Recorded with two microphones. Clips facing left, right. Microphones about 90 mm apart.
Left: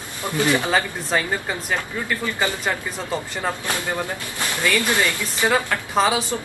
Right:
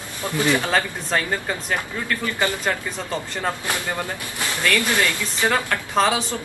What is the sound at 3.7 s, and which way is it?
A man's voice, 20° left (ahead or behind).